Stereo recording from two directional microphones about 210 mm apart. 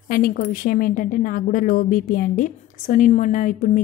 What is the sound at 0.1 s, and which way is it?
A woman's voice, 40° left (ahead or behind).